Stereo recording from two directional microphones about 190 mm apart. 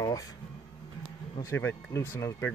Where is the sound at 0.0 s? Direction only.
20° left (ahead or behind).